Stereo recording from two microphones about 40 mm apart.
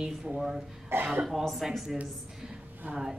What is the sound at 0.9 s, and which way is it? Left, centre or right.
Speech, right.